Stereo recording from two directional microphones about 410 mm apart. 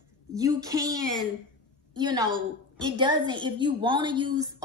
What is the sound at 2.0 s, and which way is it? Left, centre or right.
A woman's voice, centre.